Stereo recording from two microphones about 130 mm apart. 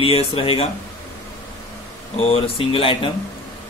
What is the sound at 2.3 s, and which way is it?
Speech, 45° left (ahead or behind).